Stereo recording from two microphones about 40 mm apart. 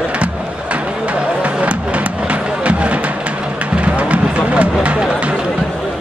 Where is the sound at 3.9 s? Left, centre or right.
Right.